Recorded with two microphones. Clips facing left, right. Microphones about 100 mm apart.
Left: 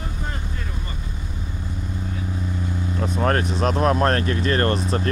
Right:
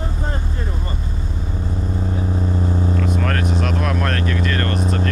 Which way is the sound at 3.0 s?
30° left (ahead or behind).